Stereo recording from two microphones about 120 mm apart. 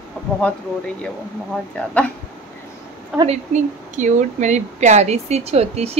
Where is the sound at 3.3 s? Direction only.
85° right.